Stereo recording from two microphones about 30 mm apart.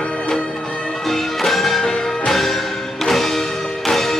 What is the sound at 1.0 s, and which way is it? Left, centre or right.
Music, centre.